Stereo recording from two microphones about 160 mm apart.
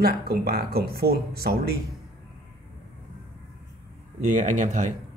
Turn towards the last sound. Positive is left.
turn(degrees=-50)  # may be behind; listen again after turning